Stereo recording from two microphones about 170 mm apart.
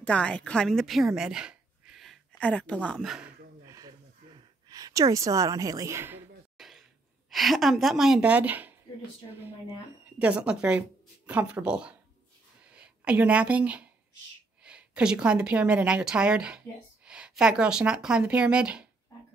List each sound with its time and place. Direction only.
0.0 s a woman's voice: 5° left (ahead or behind)
3.6 s a sound: 20° right (ahead or behind)
7.2 s speech: centre (ahead or behind)
10.0 s a woman's voice: 10° right (ahead or behind)